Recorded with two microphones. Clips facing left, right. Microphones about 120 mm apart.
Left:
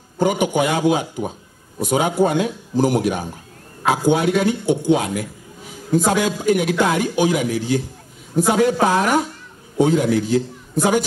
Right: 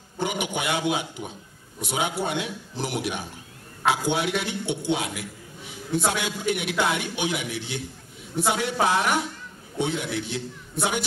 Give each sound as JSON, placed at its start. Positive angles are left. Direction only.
{"t": 0.2, "sound": "a man's voice", "side_deg": 40}